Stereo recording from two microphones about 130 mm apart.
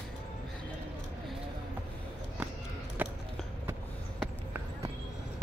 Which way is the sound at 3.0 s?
15° right (ahead or behind).